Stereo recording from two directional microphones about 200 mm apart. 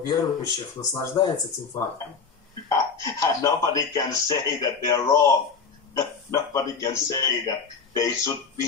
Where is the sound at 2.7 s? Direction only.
15° left (ahead or behind).